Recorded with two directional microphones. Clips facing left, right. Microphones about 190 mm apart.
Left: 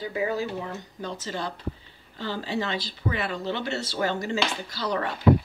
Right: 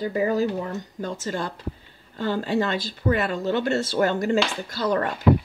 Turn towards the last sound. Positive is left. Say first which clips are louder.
# right 5 dB
turn(degrees=-50)  # may be behind; listen again after turning